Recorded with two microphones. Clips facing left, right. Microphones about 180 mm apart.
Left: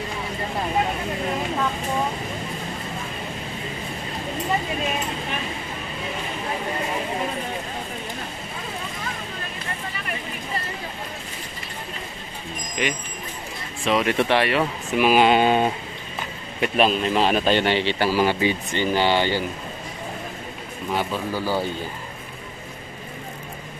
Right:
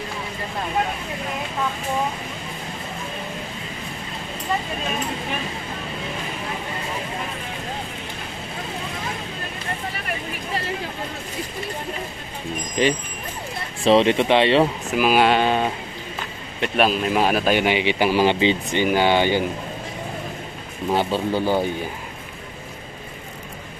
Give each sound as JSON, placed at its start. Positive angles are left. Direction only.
{"t": 12.8, "sound": "speech", "side_deg": -30}
{"t": 15.0, "sound": "speech", "side_deg": 0}
{"t": 16.6, "sound": "speech", "side_deg": 0}
{"t": 20.9, "sound": "speech", "side_deg": -30}